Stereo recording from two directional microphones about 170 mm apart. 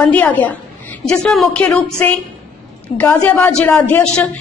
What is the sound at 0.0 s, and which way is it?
A woman's voice, 10° left (ahead or behind).